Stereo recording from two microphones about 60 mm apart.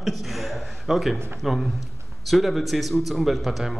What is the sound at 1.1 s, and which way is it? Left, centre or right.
Speech, right.